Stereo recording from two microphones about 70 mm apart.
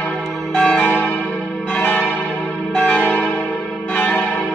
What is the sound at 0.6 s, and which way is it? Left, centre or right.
Change ringing, centre.